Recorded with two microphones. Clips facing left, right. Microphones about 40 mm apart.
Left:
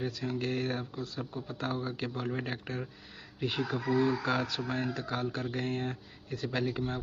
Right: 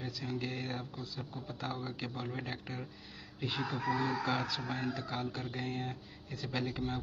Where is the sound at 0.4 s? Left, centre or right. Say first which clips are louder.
Left 9 dB; left.